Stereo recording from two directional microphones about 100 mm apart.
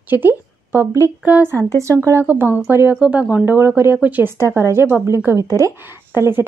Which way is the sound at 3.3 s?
20° right (ahead or behind).